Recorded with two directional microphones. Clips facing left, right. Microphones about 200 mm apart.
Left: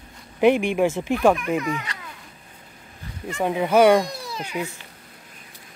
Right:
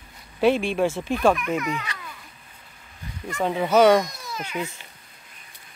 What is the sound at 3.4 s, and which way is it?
Speech, 10° left (ahead or behind).